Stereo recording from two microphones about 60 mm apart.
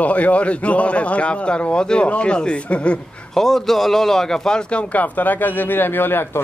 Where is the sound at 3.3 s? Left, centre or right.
Centre.